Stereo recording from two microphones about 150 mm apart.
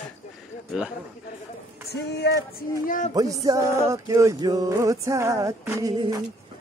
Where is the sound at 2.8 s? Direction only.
60° left (ahead or behind).